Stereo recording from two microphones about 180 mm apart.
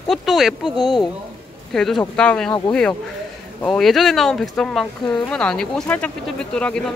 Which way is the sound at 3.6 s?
5° left (ahead or behind).